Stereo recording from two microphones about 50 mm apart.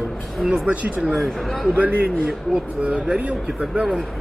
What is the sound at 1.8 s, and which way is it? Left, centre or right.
A man's voice, right.